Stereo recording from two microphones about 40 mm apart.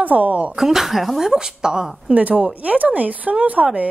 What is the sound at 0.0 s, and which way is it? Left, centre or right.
Speech, right.